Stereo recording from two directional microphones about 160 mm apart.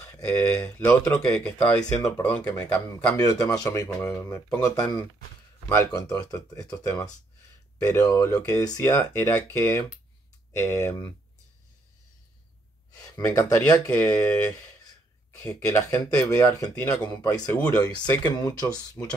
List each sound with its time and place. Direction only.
0.0 s speech: 15° left (ahead or behind)
2.0 s speech: 20° left (ahead or behind)
3.2 s speech: 20° left (ahead or behind)
13.0 s speech: 20° left (ahead or behind)